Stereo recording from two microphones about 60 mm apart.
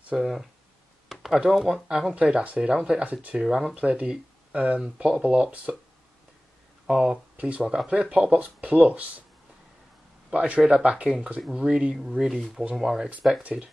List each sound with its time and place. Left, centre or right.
0.1 s speech: centre
1.0 s a sound: centre
1.4 s speech: centre
2.1 s speech: centre
3.3 s speech: centre
3.7 s speech: right
6.9 s speech: centre
7.3 s speech: right
7.6 s speech: centre
7.9 s speech: centre
10.3 s speech: right; by 13.1 s centre
13.4 s speech: right